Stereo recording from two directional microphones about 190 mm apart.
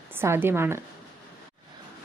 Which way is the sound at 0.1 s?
10° right (ahead or behind).